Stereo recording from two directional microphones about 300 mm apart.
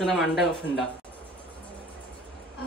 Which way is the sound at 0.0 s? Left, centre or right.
Centre.